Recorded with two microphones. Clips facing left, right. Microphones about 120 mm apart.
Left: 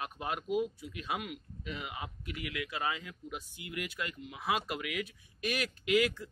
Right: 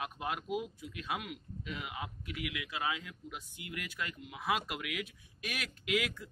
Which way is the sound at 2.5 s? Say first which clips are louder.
Left 3 dB; 10° right (ahead or behind).